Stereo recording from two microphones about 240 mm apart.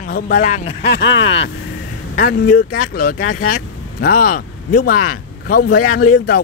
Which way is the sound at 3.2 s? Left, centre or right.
Left.